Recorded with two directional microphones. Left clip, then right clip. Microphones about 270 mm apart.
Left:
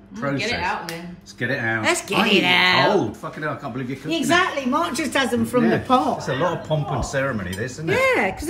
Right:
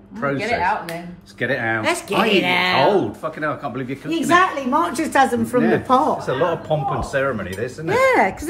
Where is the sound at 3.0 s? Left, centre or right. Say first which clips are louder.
Right 3 dB; centre.